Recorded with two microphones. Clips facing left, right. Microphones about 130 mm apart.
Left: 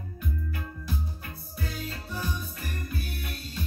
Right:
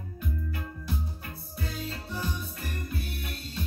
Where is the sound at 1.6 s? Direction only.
25° right (ahead or behind).